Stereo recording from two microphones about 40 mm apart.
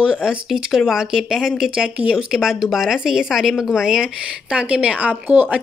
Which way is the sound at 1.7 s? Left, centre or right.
Right.